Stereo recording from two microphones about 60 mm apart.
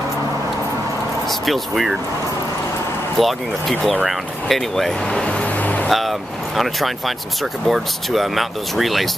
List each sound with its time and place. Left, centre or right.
1.4 s speech: centre
3.2 s speech: centre
5.2 s music: left
5.9 s speech: centre